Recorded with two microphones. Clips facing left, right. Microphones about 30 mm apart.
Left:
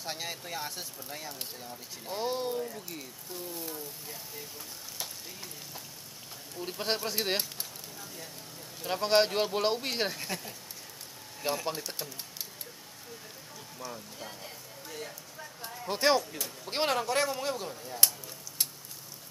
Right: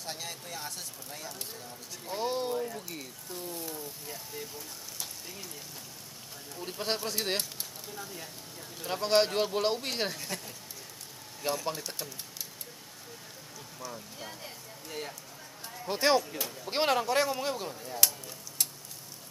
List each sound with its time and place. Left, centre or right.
0.0 s speech: centre
2.0 s speech: centre
6.5 s speech: centre
8.8 s speech: centre
13.9 s speech: centre
14.9 s speech: centre
15.6 s speech: centre